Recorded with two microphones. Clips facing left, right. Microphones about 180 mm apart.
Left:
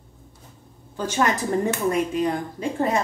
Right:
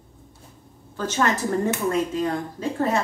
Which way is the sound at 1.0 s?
15° left (ahead or behind).